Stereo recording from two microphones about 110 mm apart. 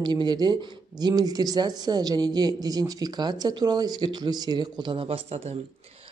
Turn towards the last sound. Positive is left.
turn(degrees=-70)  # may be behind; listen again after turning